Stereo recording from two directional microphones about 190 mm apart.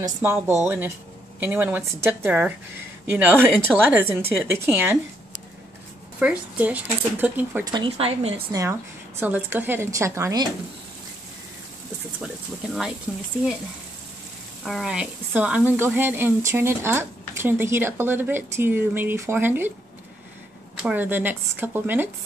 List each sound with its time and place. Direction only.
0.0 s a woman's voice: 15° right (ahead or behind)
6.1 s a woman's voice: 5° right (ahead or behind)
7.6 s a woman's voice: 25° right (ahead or behind)
9.2 s a woman's voice: 10° right (ahead or behind)
13.1 s speech: 5° right (ahead or behind)
14.6 s a woman's voice: centre (ahead or behind)
20.7 s a woman's voice: 5° right (ahead or behind)